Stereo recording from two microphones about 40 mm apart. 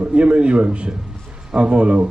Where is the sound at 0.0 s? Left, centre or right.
Right.